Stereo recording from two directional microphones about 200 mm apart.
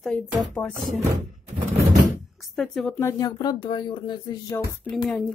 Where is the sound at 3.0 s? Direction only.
15° left (ahead or behind).